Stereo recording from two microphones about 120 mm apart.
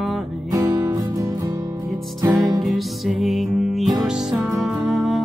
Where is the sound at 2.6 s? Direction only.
Centre (ahead or behind).